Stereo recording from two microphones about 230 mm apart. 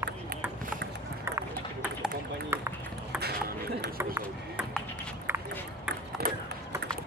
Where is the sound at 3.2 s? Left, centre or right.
Right.